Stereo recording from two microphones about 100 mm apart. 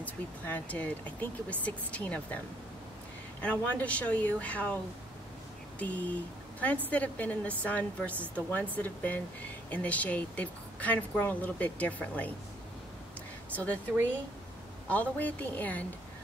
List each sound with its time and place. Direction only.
0.0 s speech: 15° left (ahead or behind)
3.4 s speech: 15° left (ahead or behind)
5.8 s speech: 15° left (ahead or behind)
14.9 s speech: 15° left (ahead or behind)